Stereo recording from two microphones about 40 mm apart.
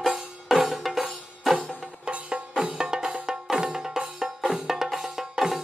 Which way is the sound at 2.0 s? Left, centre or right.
Right.